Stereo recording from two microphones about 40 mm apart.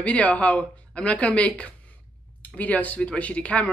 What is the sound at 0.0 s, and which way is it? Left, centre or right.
Speech, left.